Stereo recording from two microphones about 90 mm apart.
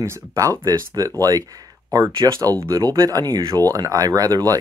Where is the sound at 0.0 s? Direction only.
30° right (ahead or behind).